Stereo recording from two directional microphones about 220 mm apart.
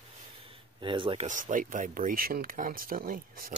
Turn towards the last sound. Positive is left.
turn(degrees=-40)  # may be behind; listen again after turning